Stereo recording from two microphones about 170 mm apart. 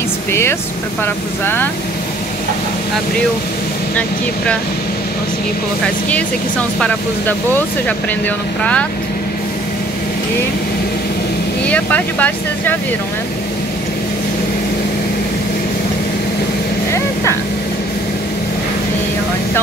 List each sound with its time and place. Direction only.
0.3 s speech: 15° left (ahead or behind)
6.8 s speech: 10° left (ahead or behind)
11.6 s speech: 10° left (ahead or behind)
16.9 s vehicle: 15° left (ahead or behind)